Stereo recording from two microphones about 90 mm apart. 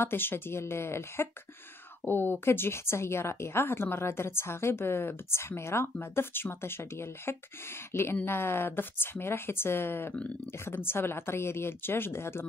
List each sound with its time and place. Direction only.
0.0 s a woman's voice: 25° left (ahead or behind)